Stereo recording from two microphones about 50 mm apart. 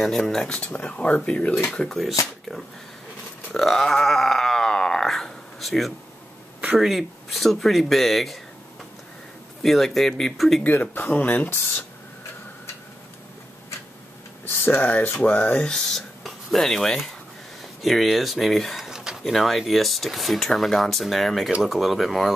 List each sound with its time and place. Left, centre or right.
0.5 s speech: left
1.7 s speech: centre
2.0 s speech: centre
3.5 s a sound: centre
6.8 s speech: centre
9.6 s speech: centre
10.6 s speech: left
14.5 s speech: left
15.6 s speech: centre
18.8 s a sound: centre
19.2 s speech: centre